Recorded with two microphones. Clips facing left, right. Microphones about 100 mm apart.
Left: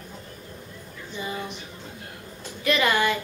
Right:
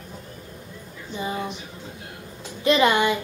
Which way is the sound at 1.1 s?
30° right (ahead or behind).